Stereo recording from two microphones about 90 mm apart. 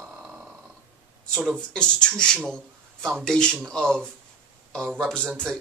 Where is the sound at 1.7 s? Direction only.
10° left (ahead or behind).